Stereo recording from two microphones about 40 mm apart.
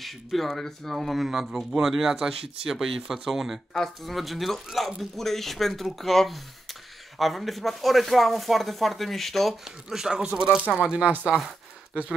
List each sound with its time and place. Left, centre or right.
0.0 s speech: centre
9.7 s speech: centre